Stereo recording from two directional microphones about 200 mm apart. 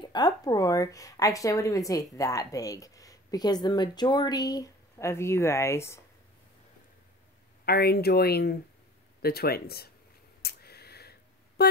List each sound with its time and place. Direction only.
0.1 s a woman's voice: 20° left (ahead or behind)
7.6 s speech: 50° left (ahead or behind)
10.4 s a sound: 50° left (ahead or behind)